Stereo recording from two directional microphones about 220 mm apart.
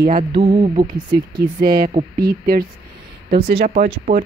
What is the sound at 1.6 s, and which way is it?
Speech, 45° right (ahead or behind).